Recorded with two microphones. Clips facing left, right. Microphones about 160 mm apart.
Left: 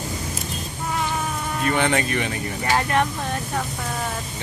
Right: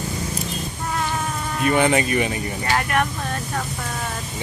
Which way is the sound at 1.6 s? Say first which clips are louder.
Right 3 dB; 10° right (ahead or behind).